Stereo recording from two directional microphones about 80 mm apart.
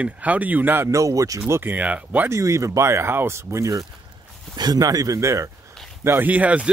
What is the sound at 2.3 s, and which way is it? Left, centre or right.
Speech, right.